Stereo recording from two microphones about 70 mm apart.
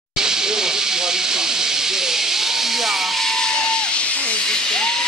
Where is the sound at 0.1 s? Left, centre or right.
Centre.